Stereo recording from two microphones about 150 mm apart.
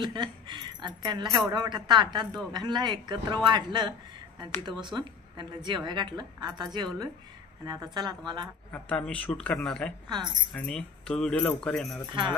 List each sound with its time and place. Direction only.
0.0 s a woman's voice: 30° right (ahead or behind)
8.7 s a man's voice: 5° left (ahead or behind)
10.0 s speech: 30° right (ahead or behind)
10.5 s speech: 5° left (ahead or behind)
12.1 s speech: 30° right (ahead or behind)